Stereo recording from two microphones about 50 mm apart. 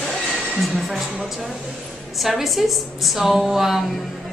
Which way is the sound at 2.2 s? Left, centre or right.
Centre.